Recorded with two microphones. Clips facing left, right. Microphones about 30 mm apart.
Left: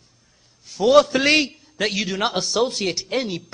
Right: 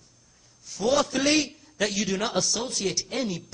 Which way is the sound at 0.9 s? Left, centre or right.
Left.